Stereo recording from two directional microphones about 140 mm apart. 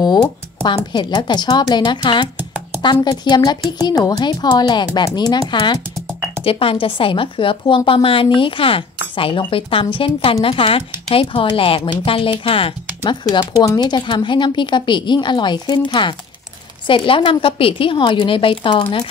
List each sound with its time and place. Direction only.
0.0 s a woman's voice: 30° left (ahead or behind)
2.3 s a sound: 15° right (ahead or behind)
2.8 s a woman's voice: 35° left (ahead or behind)